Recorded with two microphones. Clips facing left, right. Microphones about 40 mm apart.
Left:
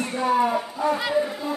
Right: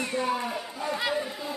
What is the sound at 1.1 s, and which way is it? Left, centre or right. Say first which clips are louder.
Speech: left 7 dB; centre.